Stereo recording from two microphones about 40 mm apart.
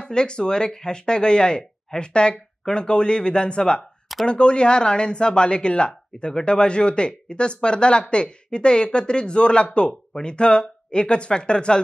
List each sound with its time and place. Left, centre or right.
0.0 s speech: left